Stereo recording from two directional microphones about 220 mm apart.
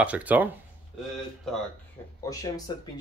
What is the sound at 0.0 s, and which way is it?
Speech, 5° right (ahead or behind).